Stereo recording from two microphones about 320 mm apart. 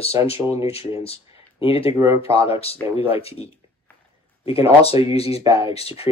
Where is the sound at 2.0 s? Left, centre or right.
Centre.